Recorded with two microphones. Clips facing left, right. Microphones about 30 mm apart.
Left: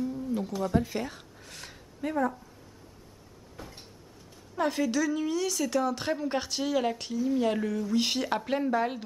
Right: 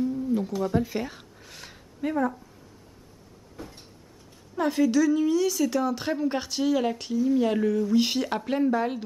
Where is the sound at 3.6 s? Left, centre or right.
Centre.